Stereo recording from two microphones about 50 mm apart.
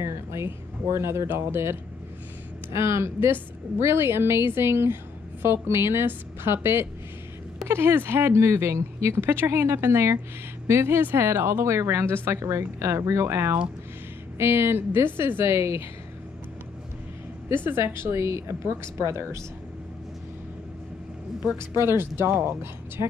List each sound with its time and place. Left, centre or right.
0.0 s speech: right
2.7 s a woman's voice: right
15.1 s a woman's voice: right
15.4 s a woman's voice: right
17.5 s a woman's voice: right
17.8 s a woman's voice: right
21.5 s a woman's voice: right